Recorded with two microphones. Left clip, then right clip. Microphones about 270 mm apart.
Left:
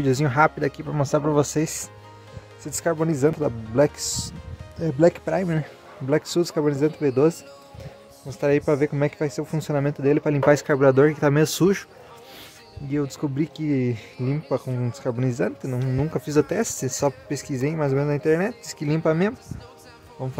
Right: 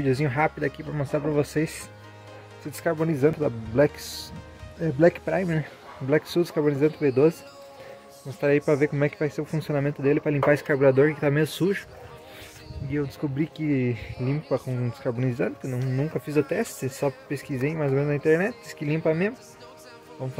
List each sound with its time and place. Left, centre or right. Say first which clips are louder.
0.0 s speech: left 4 dB; centre
4.0 s speech: left 7 dB; left
4.7 s speech: left 1 dB; centre
13.2 s speech: left 2 dB; centre